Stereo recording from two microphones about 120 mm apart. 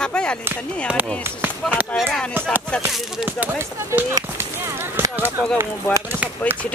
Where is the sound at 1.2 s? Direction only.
15° right (ahead or behind).